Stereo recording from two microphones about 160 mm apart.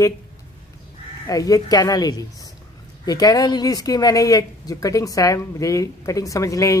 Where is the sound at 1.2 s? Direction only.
20° left (ahead or behind).